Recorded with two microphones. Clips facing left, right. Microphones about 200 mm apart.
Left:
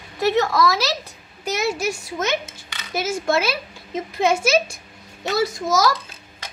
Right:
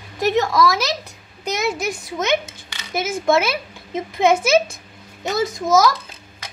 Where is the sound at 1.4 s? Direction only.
20° right (ahead or behind).